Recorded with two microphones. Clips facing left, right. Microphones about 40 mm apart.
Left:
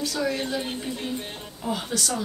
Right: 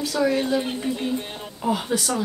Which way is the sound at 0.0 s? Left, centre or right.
Centre.